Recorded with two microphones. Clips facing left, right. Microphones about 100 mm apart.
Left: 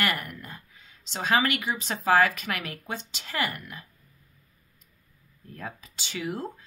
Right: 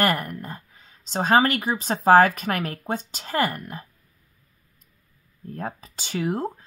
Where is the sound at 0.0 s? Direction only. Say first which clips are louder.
Right 6 dB; 40° right (ahead or behind).